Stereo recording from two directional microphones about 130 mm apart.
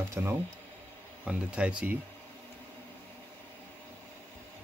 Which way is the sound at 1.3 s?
10° right (ahead or behind).